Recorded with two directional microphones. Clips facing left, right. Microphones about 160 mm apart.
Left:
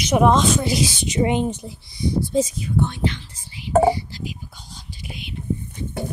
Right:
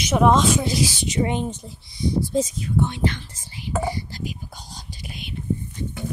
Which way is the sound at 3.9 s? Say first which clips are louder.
Even; 45° right (ahead or behind).